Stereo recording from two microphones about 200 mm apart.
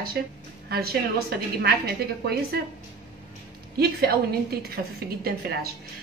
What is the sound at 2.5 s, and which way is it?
Speech, 50° right (ahead or behind).